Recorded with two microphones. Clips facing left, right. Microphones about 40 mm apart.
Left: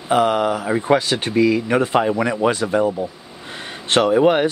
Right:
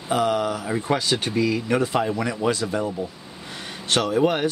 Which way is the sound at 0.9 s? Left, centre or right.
Left.